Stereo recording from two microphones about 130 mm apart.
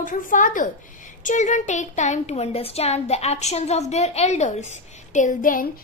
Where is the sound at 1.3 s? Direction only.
70° left (ahead or behind).